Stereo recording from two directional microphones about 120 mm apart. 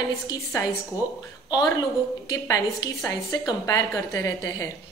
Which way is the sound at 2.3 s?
30° left (ahead or behind).